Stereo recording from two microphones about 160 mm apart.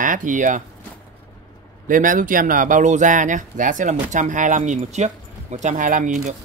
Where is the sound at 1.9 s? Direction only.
55° right (ahead or behind).